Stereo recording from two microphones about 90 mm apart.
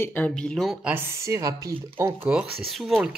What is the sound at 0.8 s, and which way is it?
Speech, 25° right (ahead or behind).